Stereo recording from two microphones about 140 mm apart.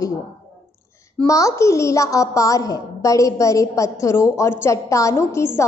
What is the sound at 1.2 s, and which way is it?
A woman's voice, 20° left (ahead or behind).